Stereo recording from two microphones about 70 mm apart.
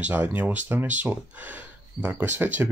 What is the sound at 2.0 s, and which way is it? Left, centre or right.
Speech, right.